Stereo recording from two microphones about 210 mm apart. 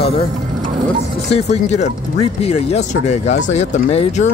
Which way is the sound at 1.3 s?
30° left (ahead or behind).